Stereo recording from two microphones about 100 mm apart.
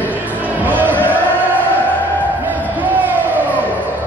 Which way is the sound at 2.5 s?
15° right (ahead or behind).